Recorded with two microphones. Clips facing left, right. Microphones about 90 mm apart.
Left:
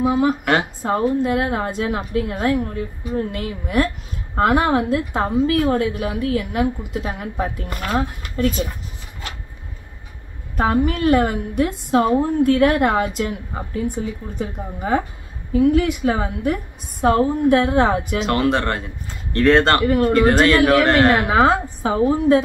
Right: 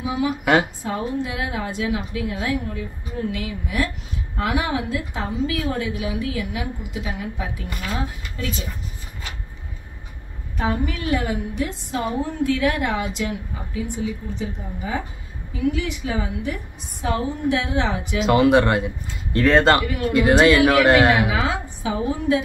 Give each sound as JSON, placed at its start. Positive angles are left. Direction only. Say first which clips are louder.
{"t": 0.0, "sound": "a woman's voice", "louder": "left 5 dB", "side_deg": 45}
{"t": 10.5, "sound": "a woman's voice", "louder": "left 6 dB", "side_deg": 45}
{"t": 18.2, "sound": "speech", "louder": "right 6 dB", "side_deg": -5}
{"t": 19.8, "sound": "a woman's voice", "louder": "left 7 dB", "side_deg": 45}
{"t": 20.2, "sound": "speech", "louder": "right 3 dB", "side_deg": -5}
{"t": 21.1, "sound": "a woman's voice", "louder": "left 5 dB", "side_deg": 45}